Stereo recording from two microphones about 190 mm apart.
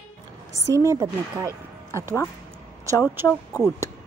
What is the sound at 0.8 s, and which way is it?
Speech, 15° right (ahead or behind).